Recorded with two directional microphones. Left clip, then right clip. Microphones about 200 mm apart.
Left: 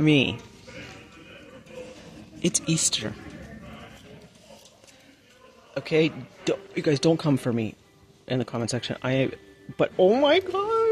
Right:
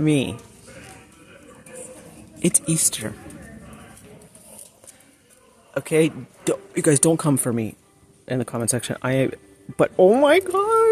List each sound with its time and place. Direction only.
0.0 s speech: 10° right (ahead or behind)
2.4 s speech: 15° right (ahead or behind)
5.8 s speech: 20° right (ahead or behind)